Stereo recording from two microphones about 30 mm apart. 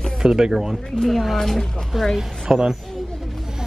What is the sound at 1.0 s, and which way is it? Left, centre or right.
Speech, centre.